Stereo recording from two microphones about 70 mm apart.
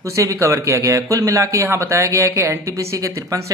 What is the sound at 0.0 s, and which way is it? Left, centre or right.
Speech, right.